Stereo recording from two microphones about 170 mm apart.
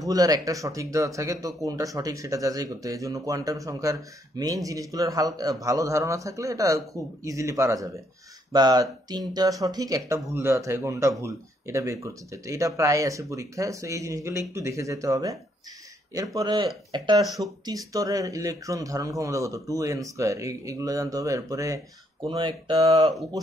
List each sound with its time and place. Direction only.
0.0 s speech: 20° right (ahead or behind)
17.2 s speech: centre (ahead or behind)
17.6 s speech: 20° right (ahead or behind)
22.2 s speech: 30° right (ahead or behind)